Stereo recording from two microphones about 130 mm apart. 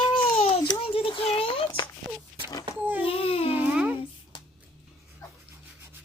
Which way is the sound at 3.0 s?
45° left (ahead or behind).